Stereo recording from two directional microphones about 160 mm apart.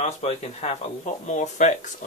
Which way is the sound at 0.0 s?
40° left (ahead or behind).